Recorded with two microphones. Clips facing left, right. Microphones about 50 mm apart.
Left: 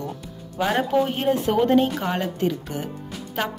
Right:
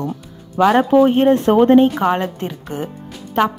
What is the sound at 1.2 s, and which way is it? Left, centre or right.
Speech, right.